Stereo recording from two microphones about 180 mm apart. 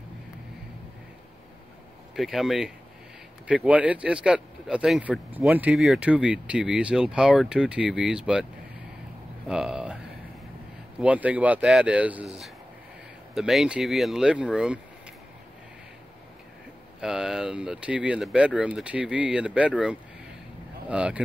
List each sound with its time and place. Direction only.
2.1 s speech: centre (ahead or behind)
9.5 s speech: 5° right (ahead or behind)
11.0 s speech: 10° right (ahead or behind)
17.0 s speech: 5° right (ahead or behind)